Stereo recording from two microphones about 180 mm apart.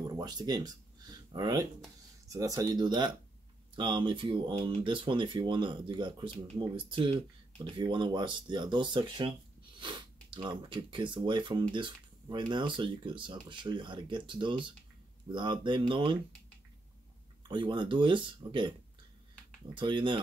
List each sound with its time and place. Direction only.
0.0 s a sound: 25° right (ahead or behind)
2.2 s speech: 20° right (ahead or behind)
17.5 s speech: 25° right (ahead or behind)